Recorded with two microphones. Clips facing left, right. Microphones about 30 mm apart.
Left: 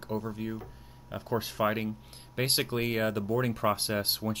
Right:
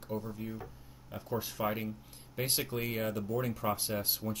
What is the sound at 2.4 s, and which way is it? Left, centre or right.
Speech, left.